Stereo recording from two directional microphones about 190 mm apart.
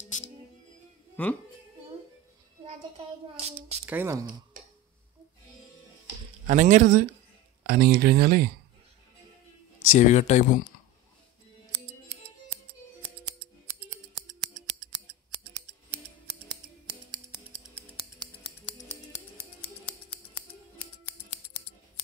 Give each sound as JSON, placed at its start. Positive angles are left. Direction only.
{"t": 0.1, "sound": "music", "side_deg": 40}
{"t": 1.2, "sound": "speech", "side_deg": 10}
{"t": 3.3, "sound": "speech", "side_deg": -35}
{"t": 3.8, "sound": "speech", "side_deg": -10}
{"t": 6.4, "sound": "speech", "side_deg": -40}
{"t": 7.6, "sound": "speech", "side_deg": -55}
{"t": 9.9, "sound": "speech", "side_deg": 40}
{"t": 14.2, "sound": "scissors", "side_deg": -40}
{"t": 17.7, "sound": "music", "side_deg": -10}